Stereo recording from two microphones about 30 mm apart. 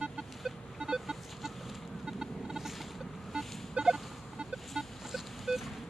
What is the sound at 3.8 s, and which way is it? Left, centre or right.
Vehicle, right.